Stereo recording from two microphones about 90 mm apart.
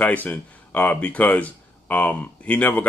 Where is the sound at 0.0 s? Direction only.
15° left (ahead or behind).